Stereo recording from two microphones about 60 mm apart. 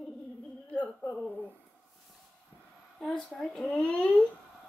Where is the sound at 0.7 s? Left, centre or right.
Left.